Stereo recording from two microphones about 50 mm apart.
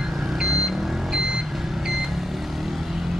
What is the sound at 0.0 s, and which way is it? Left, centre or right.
Vehicle, centre.